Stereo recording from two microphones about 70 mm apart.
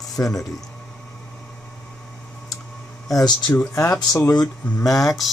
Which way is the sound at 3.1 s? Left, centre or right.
Left.